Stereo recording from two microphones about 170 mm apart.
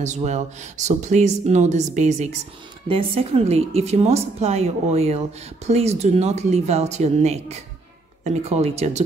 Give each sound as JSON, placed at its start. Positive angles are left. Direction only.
{"t": 0.0, "sound": "a woman's voice", "side_deg": -45}